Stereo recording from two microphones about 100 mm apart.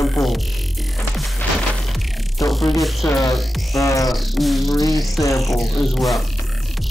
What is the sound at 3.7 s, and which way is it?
Speech, 35° left (ahead or behind).